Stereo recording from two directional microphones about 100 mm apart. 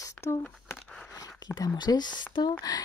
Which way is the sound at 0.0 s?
30° left (ahead or behind).